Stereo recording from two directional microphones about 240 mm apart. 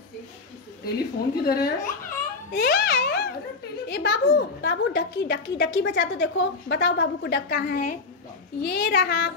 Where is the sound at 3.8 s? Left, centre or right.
Left.